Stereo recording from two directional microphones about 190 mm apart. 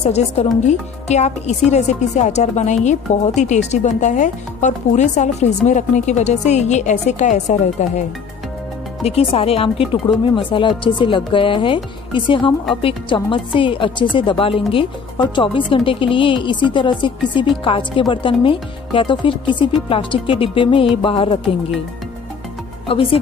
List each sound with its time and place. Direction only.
0.1 s speech: 35° left (ahead or behind)
9.0 s speech: 30° left (ahead or behind)
22.8 s speech: 30° left (ahead or behind)